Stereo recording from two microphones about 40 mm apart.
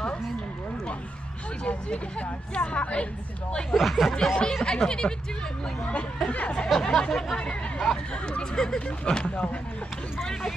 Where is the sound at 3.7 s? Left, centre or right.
Centre.